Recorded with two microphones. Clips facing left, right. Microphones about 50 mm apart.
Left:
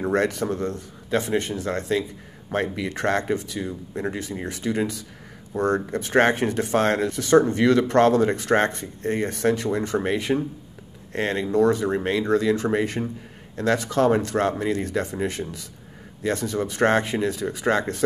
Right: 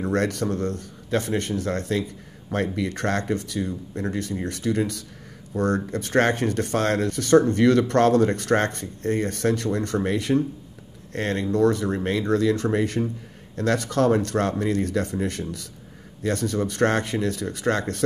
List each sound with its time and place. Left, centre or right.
0.0 s speech: centre